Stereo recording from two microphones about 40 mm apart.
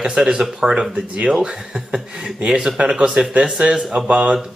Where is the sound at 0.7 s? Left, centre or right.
Right.